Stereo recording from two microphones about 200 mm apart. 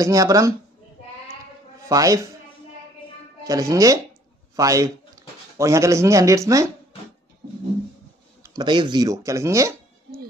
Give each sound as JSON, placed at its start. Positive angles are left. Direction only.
{"t": 0.0, "sound": "speech", "side_deg": -15}
{"t": 1.9, "sound": "speech", "side_deg": -15}
{"t": 3.4, "sound": "speech", "side_deg": -15}
{"t": 8.4, "sound": "speech", "side_deg": -20}